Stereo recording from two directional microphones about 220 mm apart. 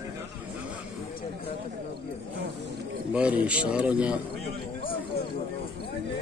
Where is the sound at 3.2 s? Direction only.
5° right (ahead or behind).